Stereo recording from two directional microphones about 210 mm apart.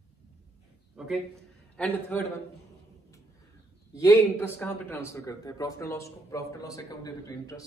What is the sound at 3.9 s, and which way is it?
Speech, 10° left (ahead or behind).